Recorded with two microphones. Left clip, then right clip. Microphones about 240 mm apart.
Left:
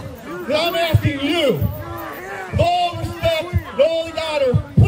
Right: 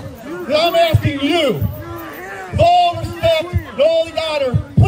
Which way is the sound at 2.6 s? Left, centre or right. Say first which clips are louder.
Right 6 dB; centre.